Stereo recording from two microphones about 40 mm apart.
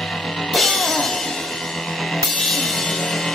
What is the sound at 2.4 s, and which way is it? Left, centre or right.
Music, centre.